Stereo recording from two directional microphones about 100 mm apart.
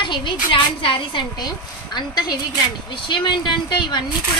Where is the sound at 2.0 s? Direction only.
45° left (ahead or behind).